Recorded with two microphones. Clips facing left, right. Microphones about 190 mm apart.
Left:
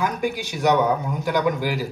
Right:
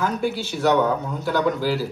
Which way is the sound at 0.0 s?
15° left (ahead or behind).